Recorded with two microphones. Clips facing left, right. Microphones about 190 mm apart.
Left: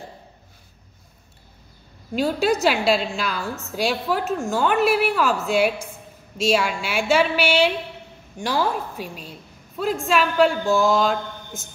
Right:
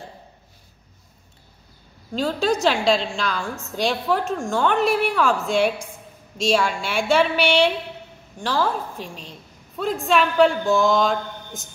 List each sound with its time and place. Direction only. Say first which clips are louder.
2.1 s a woman's voice: left 1 dB; 10° left (ahead or behind)